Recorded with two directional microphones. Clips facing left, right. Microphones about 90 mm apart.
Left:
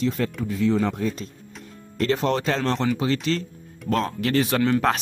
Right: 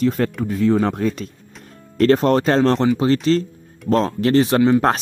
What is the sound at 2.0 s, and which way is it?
Speech, 45° right (ahead or behind).